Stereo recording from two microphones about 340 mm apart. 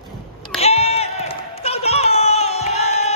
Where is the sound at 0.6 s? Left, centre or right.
Centre.